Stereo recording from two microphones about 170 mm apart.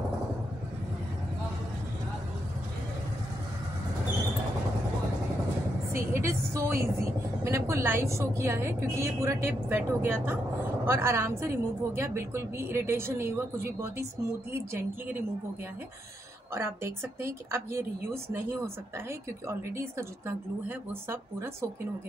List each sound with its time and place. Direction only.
5.9 s vehicle: 15° right (ahead or behind)
7.4 s a woman's voice: 15° right (ahead or behind)
16.5 s a woman's voice: 15° right (ahead or behind)